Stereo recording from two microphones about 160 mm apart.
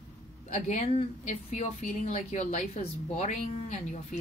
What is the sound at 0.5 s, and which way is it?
A woman's voice, 50° left (ahead or behind).